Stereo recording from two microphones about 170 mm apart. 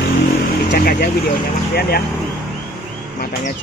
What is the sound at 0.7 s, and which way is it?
Speech, 75° left (ahead or behind).